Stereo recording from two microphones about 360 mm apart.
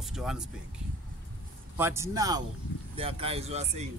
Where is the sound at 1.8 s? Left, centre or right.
Centre.